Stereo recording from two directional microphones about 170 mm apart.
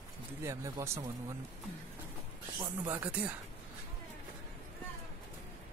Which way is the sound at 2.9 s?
10° right (ahead or behind).